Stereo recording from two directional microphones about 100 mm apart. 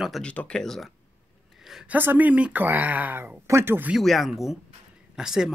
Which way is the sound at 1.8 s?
20° right (ahead or behind).